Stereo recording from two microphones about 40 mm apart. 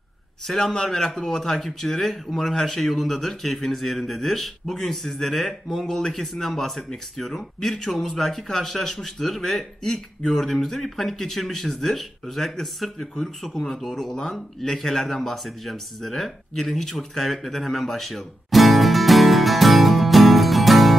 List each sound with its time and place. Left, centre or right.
0.6 s speech: centre
14.1 s speech: centre
17.1 s music: centre